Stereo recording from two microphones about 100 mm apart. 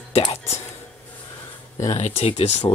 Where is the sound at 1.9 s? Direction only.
85° left.